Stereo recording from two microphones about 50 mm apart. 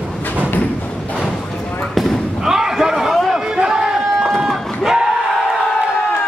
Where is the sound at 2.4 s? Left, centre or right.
Centre.